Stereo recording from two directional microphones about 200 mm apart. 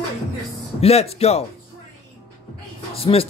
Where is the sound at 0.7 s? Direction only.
30° left (ahead or behind).